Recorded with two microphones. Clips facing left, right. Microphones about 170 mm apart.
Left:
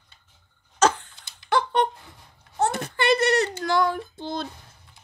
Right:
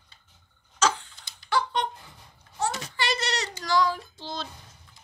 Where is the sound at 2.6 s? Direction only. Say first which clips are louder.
Left 5 dB; 55° left (ahead or behind).